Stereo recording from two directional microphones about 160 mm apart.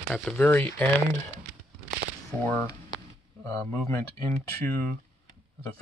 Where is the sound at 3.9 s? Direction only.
20° left (ahead or behind).